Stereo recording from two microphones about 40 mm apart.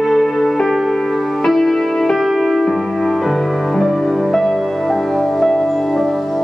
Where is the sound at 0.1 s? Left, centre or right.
Centre.